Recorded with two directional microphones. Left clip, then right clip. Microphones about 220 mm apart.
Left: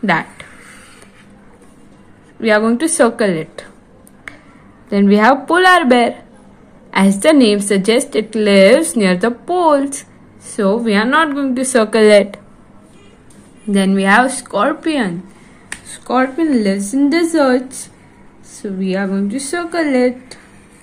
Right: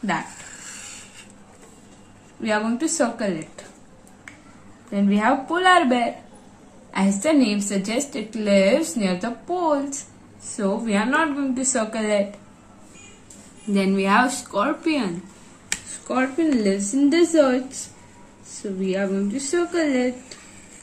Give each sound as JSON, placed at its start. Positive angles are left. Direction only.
{"t": 2.4, "sound": "speech", "side_deg": 45}
{"t": 4.9, "sound": "speech", "side_deg": 50}
{"t": 13.7, "sound": "a woman's voice", "side_deg": 40}
{"t": 16.1, "sound": "speech", "side_deg": 45}